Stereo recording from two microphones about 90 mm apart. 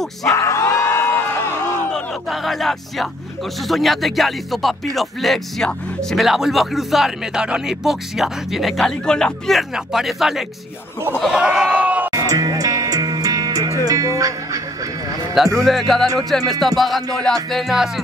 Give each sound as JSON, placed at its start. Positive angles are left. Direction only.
{"t": 0.2, "sound": "crowd", "side_deg": 35}
{"t": 2.4, "sound": "speech", "side_deg": 0}
{"t": 11.3, "sound": "a sound", "side_deg": -10}
{"t": 12.1, "sound": "music", "side_deg": -40}
{"t": 15.3, "sound": "speech", "side_deg": 0}